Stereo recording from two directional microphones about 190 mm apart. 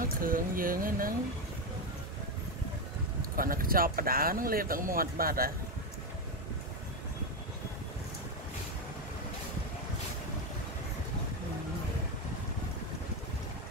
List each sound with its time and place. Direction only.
0.2 s speech: 50° right (ahead or behind)
3.2 s speech: 50° right (ahead or behind)